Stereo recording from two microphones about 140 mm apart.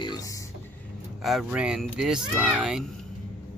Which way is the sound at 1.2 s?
5° right (ahead or behind).